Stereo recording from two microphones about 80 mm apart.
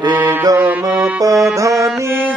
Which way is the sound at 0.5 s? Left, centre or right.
Right.